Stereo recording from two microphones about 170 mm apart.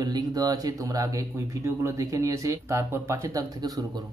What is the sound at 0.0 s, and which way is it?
Speech, 25° right (ahead or behind).